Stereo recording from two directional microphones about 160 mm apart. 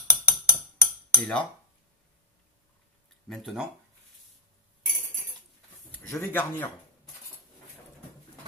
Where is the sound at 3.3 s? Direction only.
Centre (ahead or behind).